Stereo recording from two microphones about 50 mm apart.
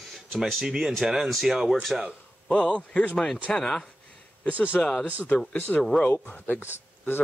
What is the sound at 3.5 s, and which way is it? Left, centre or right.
Speech, centre.